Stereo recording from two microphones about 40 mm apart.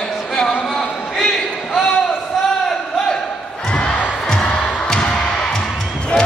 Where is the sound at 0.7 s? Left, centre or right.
Centre.